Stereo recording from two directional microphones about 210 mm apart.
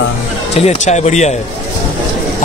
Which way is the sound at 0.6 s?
30° left (ahead or behind).